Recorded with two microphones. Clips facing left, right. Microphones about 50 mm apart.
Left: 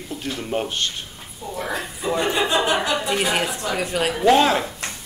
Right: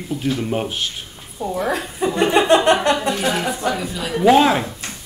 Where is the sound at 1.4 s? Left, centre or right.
Right.